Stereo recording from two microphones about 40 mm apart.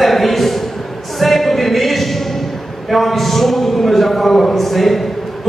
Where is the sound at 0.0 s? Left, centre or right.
Centre.